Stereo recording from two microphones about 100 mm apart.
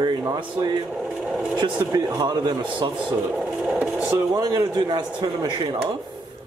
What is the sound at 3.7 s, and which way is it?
Speech, 10° right (ahead or behind).